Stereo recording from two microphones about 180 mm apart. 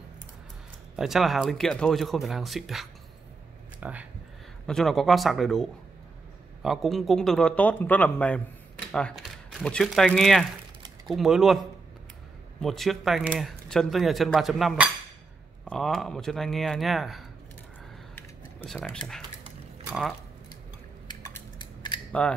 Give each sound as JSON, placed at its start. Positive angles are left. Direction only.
{"t": 0.9, "sound": "speech", "side_deg": 0}
{"t": 18.1, "sound": "a sound", "side_deg": 10}
{"t": 18.8, "sound": "speech", "side_deg": 0}
{"t": 22.2, "sound": "speech", "side_deg": 5}